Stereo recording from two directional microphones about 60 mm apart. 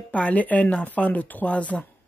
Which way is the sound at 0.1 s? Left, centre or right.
Left.